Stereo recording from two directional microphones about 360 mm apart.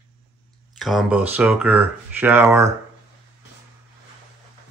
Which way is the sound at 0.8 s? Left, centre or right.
Centre.